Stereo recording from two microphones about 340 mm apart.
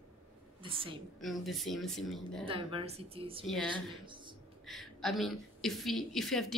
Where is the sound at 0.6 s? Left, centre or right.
Centre.